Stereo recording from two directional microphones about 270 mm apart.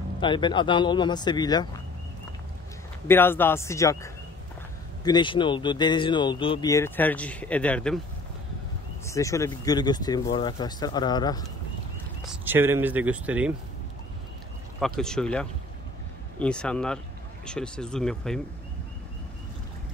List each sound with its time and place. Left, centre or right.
0.2 s speech: centre
3.1 s speech: centre
9.0 s speech: centre
12.3 s speech: centre
14.8 s speech: centre